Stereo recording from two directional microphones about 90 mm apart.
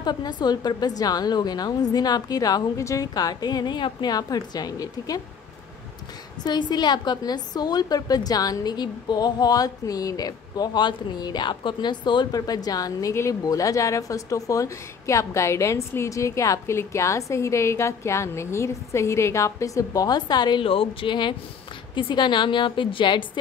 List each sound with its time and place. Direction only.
0.0 s a woman's voice: 50° left (ahead or behind)
6.4 s a woman's voice: 55° left (ahead or behind)
12.3 s speech: 45° left (ahead or behind)
20.6 s a woman's voice: 85° left; by 23.4 s 65° left (ahead or behind)